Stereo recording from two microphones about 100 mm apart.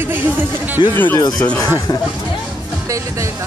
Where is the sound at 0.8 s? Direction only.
50° left (ahead or behind).